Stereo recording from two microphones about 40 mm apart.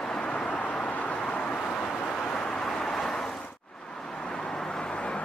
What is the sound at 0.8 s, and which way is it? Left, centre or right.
Vehicle, left.